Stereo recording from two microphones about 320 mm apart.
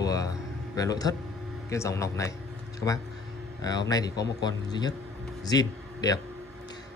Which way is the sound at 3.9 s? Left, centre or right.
Centre.